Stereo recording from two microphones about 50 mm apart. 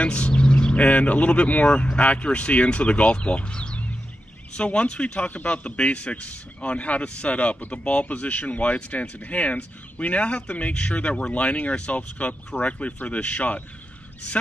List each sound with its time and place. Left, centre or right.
0.0 s a man's voice: left